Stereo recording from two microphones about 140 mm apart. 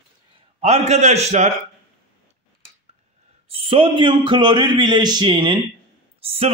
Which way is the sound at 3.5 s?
40° right (ahead or behind).